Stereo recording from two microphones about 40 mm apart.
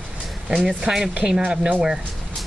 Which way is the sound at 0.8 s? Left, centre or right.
Centre.